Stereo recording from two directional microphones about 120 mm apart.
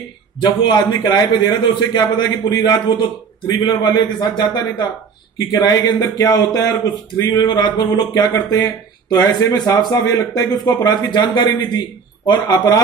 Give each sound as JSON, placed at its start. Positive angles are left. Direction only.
{"t": 0.4, "sound": "speech", "side_deg": 35}